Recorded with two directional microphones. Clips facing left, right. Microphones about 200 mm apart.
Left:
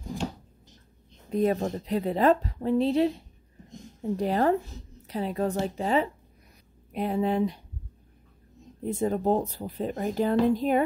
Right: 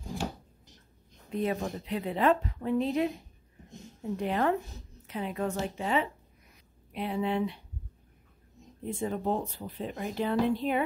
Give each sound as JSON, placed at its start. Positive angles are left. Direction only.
{"t": 1.3, "sound": "speech", "side_deg": 40}
{"t": 8.8, "sound": "speech", "side_deg": 40}